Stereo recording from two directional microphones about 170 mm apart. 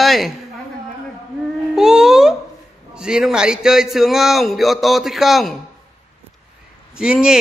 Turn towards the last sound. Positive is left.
turn(degrees=-5)  # may be behind; listen again after turning